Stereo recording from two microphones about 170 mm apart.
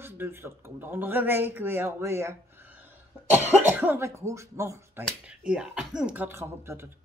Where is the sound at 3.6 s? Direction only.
10° right (ahead or behind).